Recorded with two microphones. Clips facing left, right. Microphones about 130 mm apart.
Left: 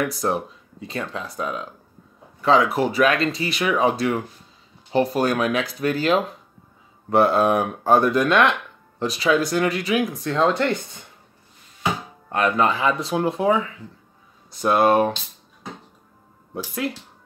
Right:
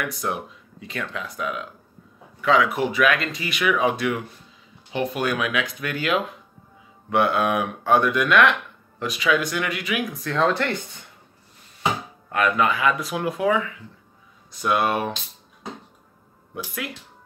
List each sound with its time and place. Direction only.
0.0 s speech: 35° left (ahead or behind)
12.3 s speech: 30° left (ahead or behind)
16.5 s speech: 30° left (ahead or behind)